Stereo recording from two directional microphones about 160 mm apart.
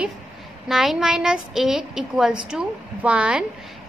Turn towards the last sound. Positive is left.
turn(degrees=-5)  # may be behind; listen again after turning